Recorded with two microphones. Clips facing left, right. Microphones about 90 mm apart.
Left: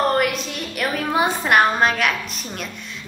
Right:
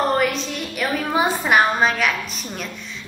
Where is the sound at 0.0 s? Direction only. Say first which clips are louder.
Even; 5° left (ahead or behind).